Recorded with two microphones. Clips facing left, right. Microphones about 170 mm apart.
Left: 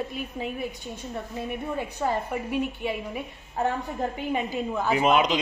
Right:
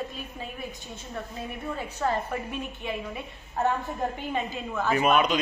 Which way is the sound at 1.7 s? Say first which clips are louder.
Even; 10° left (ahead or behind).